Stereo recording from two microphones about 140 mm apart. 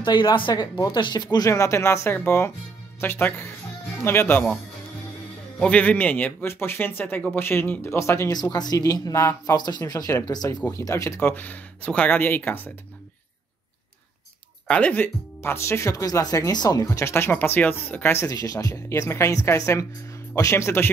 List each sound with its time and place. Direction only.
0.0 s speech: 30° left (ahead or behind); by 4.6 s 10° left (ahead or behind)
5.6 s speech: 10° left (ahead or behind)
14.7 s speech: 10° left (ahead or behind)